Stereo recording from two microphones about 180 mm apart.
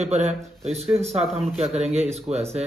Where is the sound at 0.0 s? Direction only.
40° right (ahead or behind).